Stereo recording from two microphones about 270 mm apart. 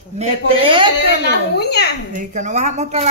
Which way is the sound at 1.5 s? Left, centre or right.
Left.